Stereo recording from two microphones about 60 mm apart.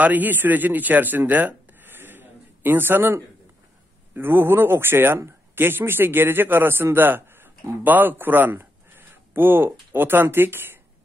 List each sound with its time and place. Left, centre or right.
0.0 s a man's voice: right